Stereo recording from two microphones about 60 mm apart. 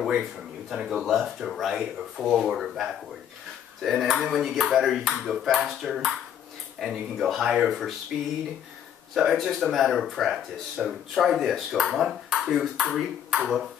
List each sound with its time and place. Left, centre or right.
0.2 s speech: centre
8.1 s speech: centre
9.1 s speech: centre